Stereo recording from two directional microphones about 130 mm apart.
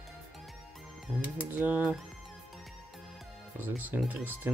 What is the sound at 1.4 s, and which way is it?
Speech, 15° right (ahead or behind).